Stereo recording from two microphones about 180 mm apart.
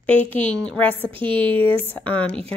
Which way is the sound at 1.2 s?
30° right (ahead or behind).